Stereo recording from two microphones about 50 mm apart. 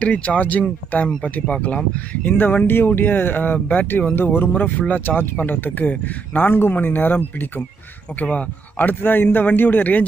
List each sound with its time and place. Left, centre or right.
0.0 s speech: left
2.0 s speech: left
8.7 s speech: left